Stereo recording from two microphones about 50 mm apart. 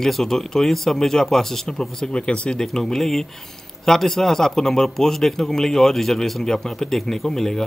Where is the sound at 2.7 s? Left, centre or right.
Centre.